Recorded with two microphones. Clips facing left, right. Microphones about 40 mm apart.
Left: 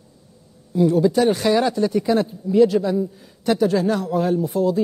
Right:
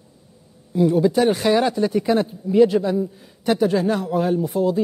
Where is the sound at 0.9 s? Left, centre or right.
Centre.